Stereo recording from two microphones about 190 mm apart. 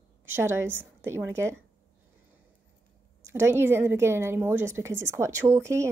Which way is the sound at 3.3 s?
15° right (ahead or behind).